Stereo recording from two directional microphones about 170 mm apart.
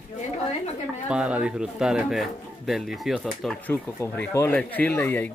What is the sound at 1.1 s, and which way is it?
Speech, 5° right (ahead or behind).